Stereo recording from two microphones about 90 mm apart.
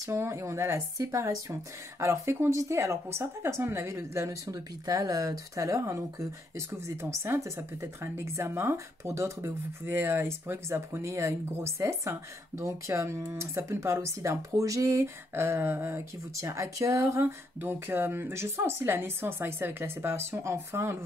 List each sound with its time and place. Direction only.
0.0 s speech: 30° right (ahead or behind)